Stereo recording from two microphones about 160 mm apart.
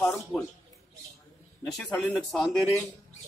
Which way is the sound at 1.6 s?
5° left (ahead or behind).